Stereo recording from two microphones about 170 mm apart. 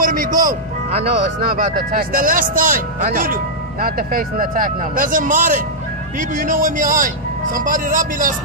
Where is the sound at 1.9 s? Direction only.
55° right (ahead or behind).